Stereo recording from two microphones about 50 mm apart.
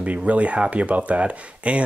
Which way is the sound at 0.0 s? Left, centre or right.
Right.